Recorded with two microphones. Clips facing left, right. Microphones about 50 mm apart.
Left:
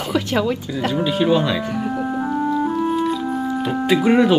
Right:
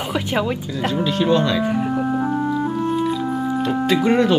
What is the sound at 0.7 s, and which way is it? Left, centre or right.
Speech, centre.